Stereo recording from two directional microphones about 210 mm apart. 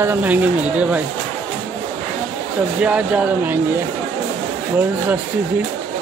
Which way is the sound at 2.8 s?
5° right (ahead or behind).